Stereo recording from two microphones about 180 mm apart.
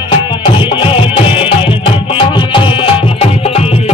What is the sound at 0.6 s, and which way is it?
Music, 30° left (ahead or behind).